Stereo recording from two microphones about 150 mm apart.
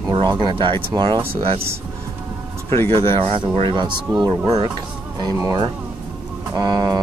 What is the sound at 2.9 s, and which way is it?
Speech, 40° right (ahead or behind).